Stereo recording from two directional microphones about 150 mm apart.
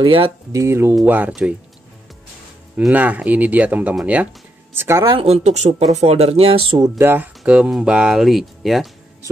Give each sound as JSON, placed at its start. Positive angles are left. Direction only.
{"t": 0.0, "sound": "speech", "side_deg": -35}
{"t": 0.5, "sound": "speech", "side_deg": -20}
{"t": 2.8, "sound": "speech", "side_deg": -10}
{"t": 5.1, "sound": "speech", "side_deg": -45}
{"t": 7.0, "sound": "speech", "side_deg": -15}